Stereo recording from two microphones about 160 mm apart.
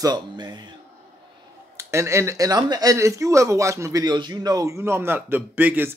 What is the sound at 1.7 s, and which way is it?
Speech, 20° right (ahead or behind).